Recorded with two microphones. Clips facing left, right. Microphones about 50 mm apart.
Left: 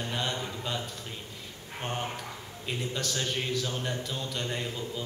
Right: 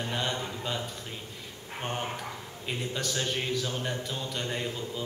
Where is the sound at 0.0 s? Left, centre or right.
Centre.